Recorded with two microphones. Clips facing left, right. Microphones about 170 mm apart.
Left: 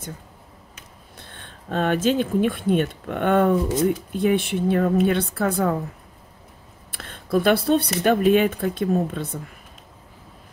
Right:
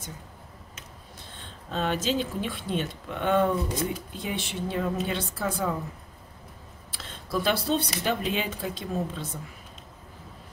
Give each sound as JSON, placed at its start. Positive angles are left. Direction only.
{"t": 1.2, "sound": "speech", "side_deg": 55}
{"t": 6.9, "sound": "speech", "side_deg": 55}